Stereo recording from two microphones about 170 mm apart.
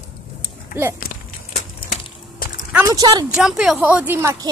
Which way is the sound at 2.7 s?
10° right (ahead or behind).